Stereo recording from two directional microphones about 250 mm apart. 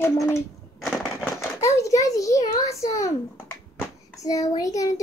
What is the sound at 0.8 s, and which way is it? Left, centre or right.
Crushing, centre.